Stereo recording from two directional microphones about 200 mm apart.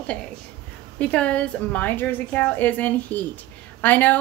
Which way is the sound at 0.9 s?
5° left (ahead or behind).